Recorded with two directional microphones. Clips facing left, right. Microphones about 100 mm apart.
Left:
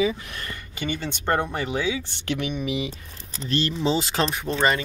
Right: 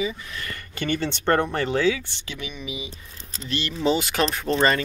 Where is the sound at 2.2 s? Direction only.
60° left (ahead or behind).